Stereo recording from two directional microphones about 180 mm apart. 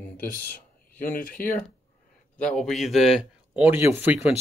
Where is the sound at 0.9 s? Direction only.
10° left (ahead or behind).